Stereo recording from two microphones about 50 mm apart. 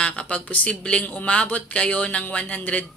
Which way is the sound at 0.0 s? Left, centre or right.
Left.